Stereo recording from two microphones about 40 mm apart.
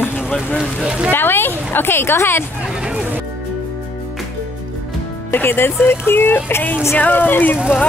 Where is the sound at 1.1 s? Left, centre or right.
Left.